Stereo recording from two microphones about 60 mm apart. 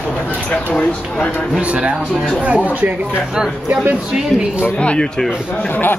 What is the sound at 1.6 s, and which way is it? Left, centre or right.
Speech, right.